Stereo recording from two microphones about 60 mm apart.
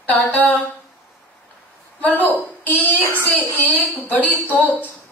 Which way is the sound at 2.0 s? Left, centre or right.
Left.